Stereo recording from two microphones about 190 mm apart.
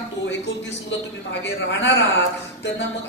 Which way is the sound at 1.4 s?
70° left (ahead or behind).